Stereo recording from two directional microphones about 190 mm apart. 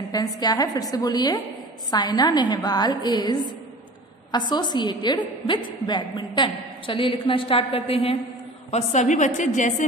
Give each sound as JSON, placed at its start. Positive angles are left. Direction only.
{"t": 0.1, "sound": "a woman's voice", "side_deg": 20}